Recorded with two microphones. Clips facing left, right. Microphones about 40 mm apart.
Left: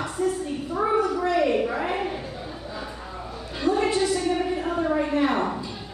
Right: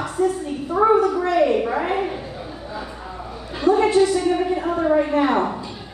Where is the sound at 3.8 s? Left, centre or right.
Centre.